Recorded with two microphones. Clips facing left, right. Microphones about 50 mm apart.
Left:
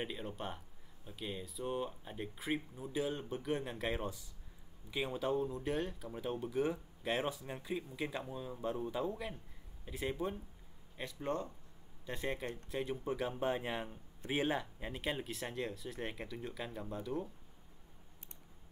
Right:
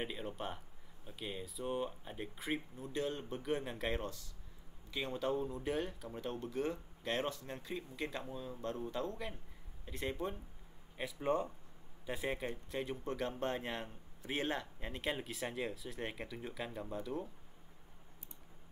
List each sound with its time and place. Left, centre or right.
0.0 s a man's voice: centre
11.1 s speech: centre
12.1 s a man's voice: centre